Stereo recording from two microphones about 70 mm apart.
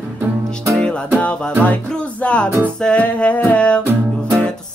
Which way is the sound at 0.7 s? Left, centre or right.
Centre.